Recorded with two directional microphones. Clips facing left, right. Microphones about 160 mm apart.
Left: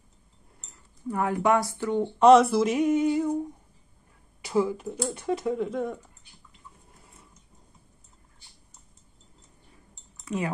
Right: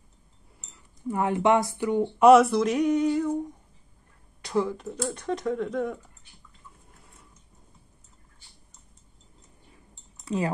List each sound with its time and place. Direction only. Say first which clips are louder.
1.0 s speech: right 1 dB; 20° right (ahead or behind); by 3.3 s 5° left (ahead or behind)
4.4 s speech: left 1 dB; 5° left (ahead or behind)
10.2 s speech: right 2 dB; 30° right (ahead or behind)